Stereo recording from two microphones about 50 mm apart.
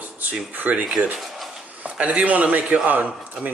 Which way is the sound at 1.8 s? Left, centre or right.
Right.